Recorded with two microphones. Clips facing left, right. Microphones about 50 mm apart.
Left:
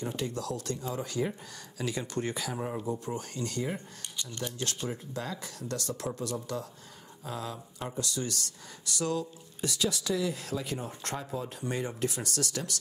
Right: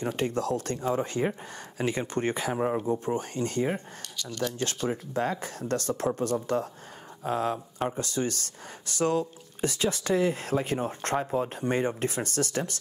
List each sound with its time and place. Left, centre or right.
0.0 s speech: right
4.2 s speech: left
5.1 s speech: right